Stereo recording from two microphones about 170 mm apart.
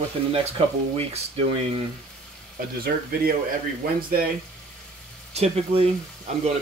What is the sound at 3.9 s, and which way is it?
Speech, 60° right (ahead or behind).